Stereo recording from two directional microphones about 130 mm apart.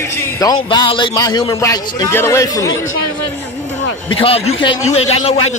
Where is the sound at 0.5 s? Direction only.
35° left (ahead or behind).